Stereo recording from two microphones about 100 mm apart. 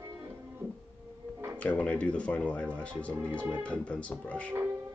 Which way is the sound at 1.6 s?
10° left (ahead or behind).